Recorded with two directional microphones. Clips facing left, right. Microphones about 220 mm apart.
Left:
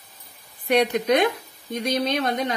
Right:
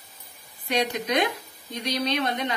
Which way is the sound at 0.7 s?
55° left (ahead or behind).